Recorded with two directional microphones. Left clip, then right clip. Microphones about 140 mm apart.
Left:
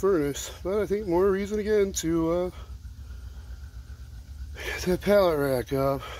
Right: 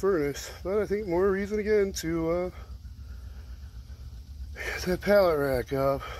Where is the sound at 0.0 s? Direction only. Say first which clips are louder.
Left 2 dB; 15° left (ahead or behind).